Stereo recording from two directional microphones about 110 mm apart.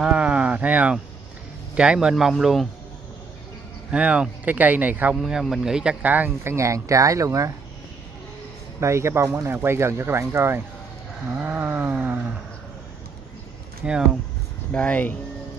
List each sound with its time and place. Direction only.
0.0 s a sound: 10° right (ahead or behind)
1.8 s speech: 10° right (ahead or behind)
3.9 s speech: 10° right (ahead or behind)
5.1 s speech: 5° right (ahead or behind)
6.5 s speech: 30° right (ahead or behind)
8.7 s speech: 25° right (ahead or behind)
13.8 s speech: 10° right (ahead or behind)
14.7 s speech: 10° left (ahead or behind)